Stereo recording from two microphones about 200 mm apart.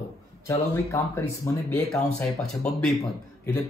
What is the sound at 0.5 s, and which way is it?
A man's voice, 15° left (ahead or behind).